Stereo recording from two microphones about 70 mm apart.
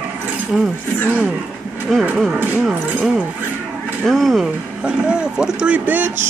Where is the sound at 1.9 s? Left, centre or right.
Centre.